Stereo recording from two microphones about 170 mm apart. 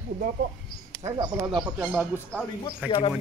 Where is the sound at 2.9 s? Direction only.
30° left (ahead or behind).